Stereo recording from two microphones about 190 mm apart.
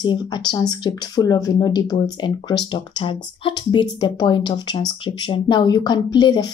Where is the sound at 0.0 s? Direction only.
20° left (ahead or behind).